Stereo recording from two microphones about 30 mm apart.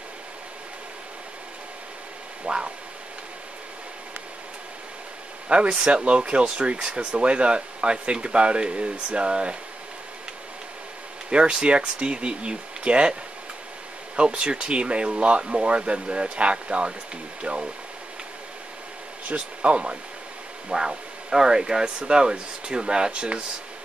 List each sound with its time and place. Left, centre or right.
2.4 s a sound: right
5.5 s speech: right
11.2 s speech: right
14.1 s speech: right
19.2 s speech: right
20.7 s speech: centre; by 23.4 s right